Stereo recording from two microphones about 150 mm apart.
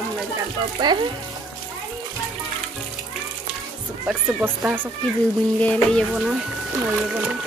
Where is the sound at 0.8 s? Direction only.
30° right (ahead or behind).